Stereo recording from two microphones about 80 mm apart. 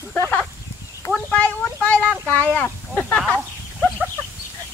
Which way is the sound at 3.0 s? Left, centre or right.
Centre.